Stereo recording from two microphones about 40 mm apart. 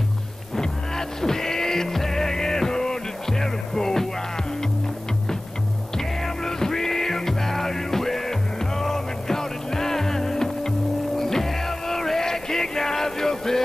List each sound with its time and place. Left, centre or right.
0.6 s music: centre
5.9 s music: centre